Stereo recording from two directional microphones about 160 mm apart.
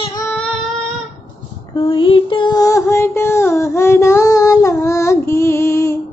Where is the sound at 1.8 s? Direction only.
30° left (ahead or behind).